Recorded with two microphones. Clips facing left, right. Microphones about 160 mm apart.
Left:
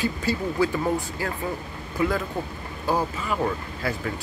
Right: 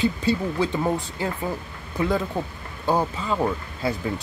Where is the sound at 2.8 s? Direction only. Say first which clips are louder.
Right 2 dB; 25° right (ahead or behind).